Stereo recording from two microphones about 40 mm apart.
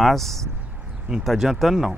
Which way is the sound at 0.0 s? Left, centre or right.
Centre.